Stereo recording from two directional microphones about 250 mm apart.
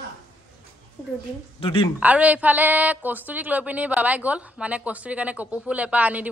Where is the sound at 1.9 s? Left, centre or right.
Centre.